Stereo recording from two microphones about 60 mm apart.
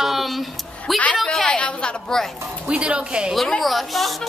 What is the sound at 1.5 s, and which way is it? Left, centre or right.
Speech, centre.